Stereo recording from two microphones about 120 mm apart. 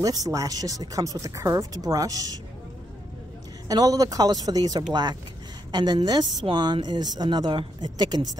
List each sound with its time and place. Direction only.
0.0 s a woman's voice: 30° right (ahead or behind)
3.6 s a woman's voice: 30° right (ahead or behind)